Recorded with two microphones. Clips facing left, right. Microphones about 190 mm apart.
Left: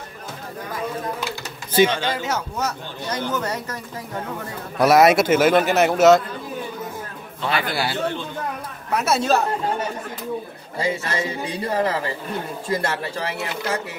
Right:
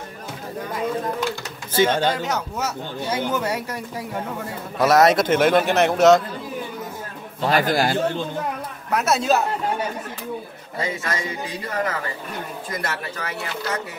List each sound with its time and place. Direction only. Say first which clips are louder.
1.9 s a man's voice: right 4 dB; 50° right (ahead or behind)
2.6 s speech: right 1 dB; 10° right (ahead or behind)
4.7 s a man's voice: left 2 dB; 10° left (ahead or behind)
7.4 s a man's voice: right 4 dB; 40° right (ahead or behind)
8.9 s a man's voice: even; centre (ahead or behind)
10.8 s a man's voice: left 3 dB; 30° left (ahead or behind)